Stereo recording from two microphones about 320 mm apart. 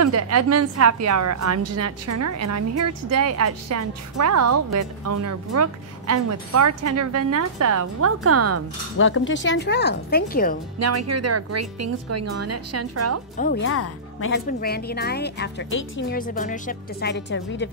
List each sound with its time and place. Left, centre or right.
0.0 s a woman's voice: right
8.9 s speech: left
10.8 s a woman's voice: right
13.4 s a woman's voice: left
13.7 s speech: left
14.4 s a woman's voice: left